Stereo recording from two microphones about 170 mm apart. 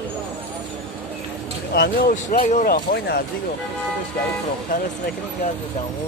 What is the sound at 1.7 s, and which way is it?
Speech, 65° left (ahead or behind).